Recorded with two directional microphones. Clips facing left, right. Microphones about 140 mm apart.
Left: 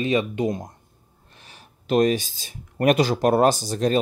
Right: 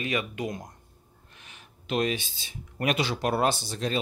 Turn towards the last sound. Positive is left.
turn(degrees=45)  # may be behind; listen again after turning